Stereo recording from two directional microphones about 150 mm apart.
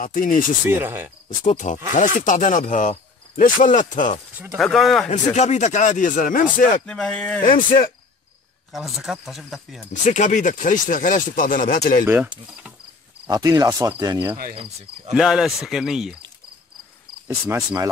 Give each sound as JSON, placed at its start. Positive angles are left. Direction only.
{"t": 0.0, "sound": "speech", "side_deg": 65}
{"t": 0.7, "sound": "cricket", "side_deg": -15}
{"t": 1.4, "sound": "speech", "side_deg": 55}
{"t": 4.6, "sound": "speech", "side_deg": 0}
{"t": 5.1, "sound": "speech", "side_deg": 50}
{"t": 6.9, "sound": "speech", "side_deg": 5}
{"t": 7.4, "sound": "speech", "side_deg": 65}
{"t": 8.7, "sound": "speech", "side_deg": 0}
{"t": 10.0, "sound": "speech", "side_deg": 55}
{"t": 13.3, "sound": "speech", "side_deg": -25}
{"t": 14.5, "sound": "cricket", "side_deg": -40}
{"t": 15.1, "sound": "speech", "side_deg": 0}